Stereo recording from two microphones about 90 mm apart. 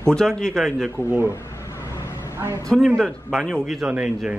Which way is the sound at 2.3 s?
30° right (ahead or behind).